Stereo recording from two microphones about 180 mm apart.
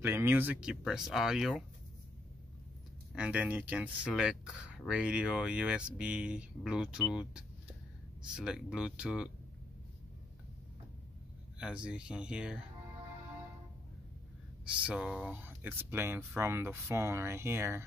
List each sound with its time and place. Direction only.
0.0 s speech: 15° right (ahead or behind)
3.2 s speech: 10° right (ahead or behind)
11.5 s speech: 5° right (ahead or behind)
14.6 s speech: 5° right (ahead or behind)